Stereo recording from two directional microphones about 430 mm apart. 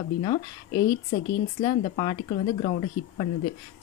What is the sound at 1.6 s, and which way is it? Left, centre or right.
Speech, centre.